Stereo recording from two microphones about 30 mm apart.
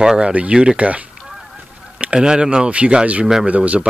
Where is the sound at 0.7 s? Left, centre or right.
Right.